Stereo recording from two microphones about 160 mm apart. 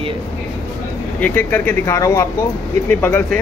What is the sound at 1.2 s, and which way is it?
Speech, 10° left (ahead or behind).